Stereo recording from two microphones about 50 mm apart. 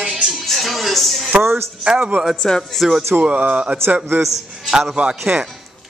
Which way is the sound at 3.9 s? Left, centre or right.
Right.